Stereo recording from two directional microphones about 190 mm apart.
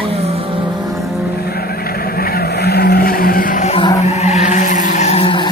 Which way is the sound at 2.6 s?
55° left (ahead or behind).